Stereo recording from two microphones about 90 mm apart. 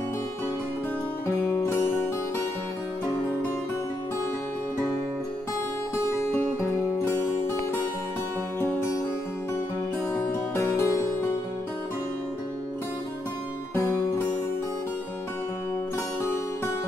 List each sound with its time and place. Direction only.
1.2 s music: 30° left (ahead or behind)
10.1 s music: 25° left (ahead or behind)